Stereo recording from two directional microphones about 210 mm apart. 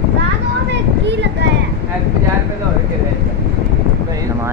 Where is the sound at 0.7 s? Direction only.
55° right (ahead or behind).